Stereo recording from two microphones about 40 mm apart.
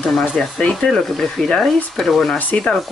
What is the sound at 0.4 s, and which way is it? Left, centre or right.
Speech, centre.